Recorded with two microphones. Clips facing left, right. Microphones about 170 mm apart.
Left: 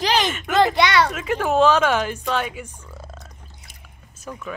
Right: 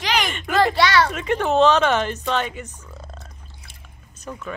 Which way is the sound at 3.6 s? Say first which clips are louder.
Even; 5° left (ahead or behind).